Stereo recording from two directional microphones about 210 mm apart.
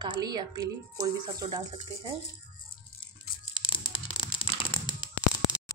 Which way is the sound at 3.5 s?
25° left (ahead or behind).